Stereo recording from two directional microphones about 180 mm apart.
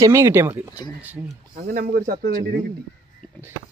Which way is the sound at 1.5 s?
60° right (ahead or behind).